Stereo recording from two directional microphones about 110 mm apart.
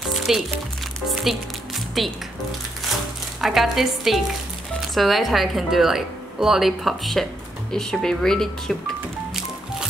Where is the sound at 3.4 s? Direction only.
Centre (ahead or behind).